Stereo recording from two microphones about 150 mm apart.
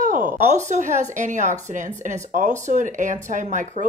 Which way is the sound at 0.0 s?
60° right (ahead or behind).